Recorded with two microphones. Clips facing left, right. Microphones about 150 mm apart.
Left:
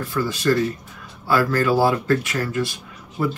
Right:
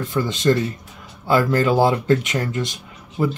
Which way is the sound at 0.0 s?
20° right (ahead or behind).